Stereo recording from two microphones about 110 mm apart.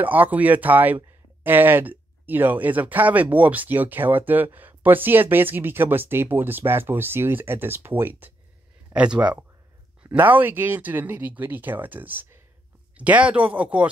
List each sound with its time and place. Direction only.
0.0 s speech: 15° right (ahead or behind)